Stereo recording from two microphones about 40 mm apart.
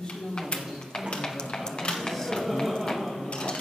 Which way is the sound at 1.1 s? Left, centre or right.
Centre.